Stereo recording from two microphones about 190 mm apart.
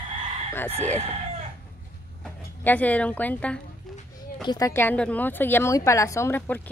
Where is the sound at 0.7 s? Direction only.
30° right (ahead or behind).